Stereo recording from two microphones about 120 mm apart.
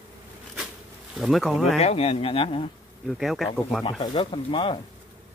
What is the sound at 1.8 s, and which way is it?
Speech, 60° left (ahead or behind).